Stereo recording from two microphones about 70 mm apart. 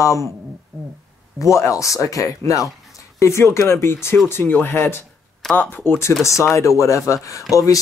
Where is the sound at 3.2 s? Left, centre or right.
Left.